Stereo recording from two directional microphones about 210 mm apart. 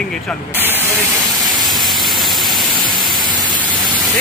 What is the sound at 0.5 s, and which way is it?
Speech, 10° right (ahead or behind).